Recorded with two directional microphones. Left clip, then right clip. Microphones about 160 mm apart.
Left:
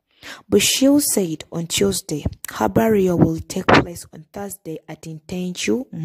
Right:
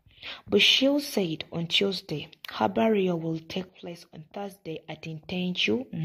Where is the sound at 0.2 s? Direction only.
60° left (ahead or behind).